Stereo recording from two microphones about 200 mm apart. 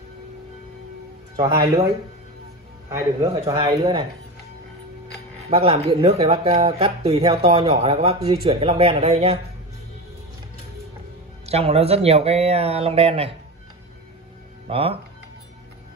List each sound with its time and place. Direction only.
1.3 s speech: 20° right (ahead or behind)
2.9 s a man's voice: 15° right (ahead or behind)
5.5 s speech: 30° right (ahead or behind)
11.4 s speech: 30° right (ahead or behind)
14.7 s speech: 30° right (ahead or behind)